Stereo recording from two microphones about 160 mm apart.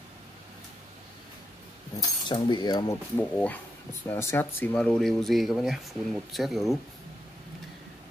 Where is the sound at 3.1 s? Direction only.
10° left (ahead or behind).